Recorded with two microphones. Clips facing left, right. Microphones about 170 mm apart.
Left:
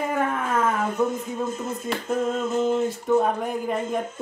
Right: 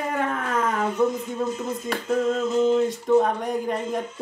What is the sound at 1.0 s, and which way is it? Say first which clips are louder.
Speech: right 2 dB; centre (ahead or behind).